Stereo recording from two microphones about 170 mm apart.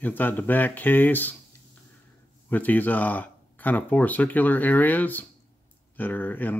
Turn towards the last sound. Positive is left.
turn(degrees=10)  # may be behind; listen again after turning